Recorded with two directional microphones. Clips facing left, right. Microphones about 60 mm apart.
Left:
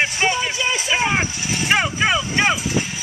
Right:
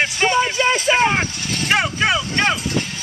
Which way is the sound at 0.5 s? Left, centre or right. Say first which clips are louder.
Right 5 dB; right.